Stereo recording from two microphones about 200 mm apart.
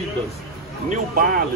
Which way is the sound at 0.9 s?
45° right (ahead or behind).